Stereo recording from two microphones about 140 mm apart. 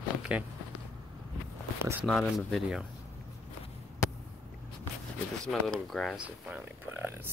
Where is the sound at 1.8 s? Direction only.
15° right (ahead or behind).